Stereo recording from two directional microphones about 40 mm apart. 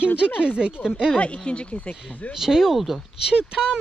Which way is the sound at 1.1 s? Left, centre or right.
Left.